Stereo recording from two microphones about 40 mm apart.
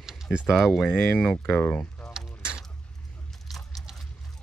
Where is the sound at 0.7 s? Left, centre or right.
Centre.